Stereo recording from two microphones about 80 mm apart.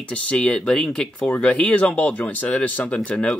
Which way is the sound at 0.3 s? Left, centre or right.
Centre.